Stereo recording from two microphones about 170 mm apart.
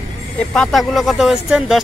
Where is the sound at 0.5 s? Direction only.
Centre (ahead or behind).